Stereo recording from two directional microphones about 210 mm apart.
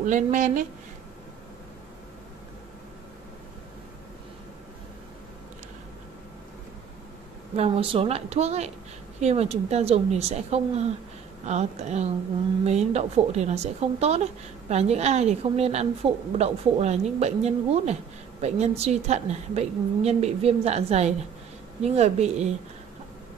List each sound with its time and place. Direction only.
0.0 s a woman's voice: 35° right (ahead or behind)
7.5 s a woman's voice: 30° right (ahead or behind)